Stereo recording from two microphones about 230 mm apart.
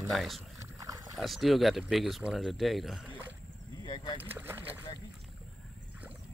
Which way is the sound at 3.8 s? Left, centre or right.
Centre.